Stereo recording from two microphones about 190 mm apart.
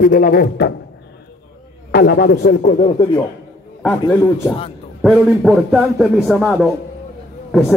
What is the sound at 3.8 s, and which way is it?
Speech, 10° left (ahead or behind).